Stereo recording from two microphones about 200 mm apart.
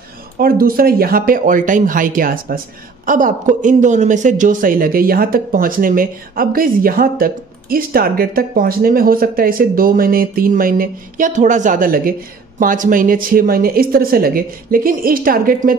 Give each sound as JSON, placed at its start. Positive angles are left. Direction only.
{"t": 0.4, "sound": "speech", "side_deg": -45}